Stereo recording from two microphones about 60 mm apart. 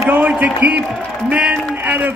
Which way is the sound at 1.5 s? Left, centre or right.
Right.